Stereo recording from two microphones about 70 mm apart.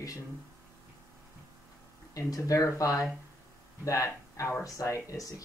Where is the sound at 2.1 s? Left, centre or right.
Left.